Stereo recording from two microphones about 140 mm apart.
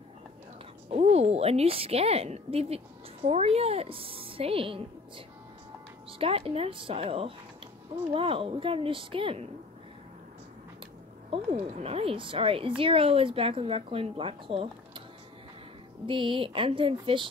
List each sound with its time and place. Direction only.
0.8 s a woman's voice: 50° right (ahead or behind)
11.2 s a woman's voice: 45° right (ahead or behind)
16.1 s a woman's voice: 35° right (ahead or behind)